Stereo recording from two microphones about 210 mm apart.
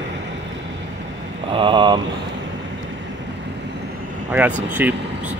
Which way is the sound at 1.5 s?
25° right (ahead or behind).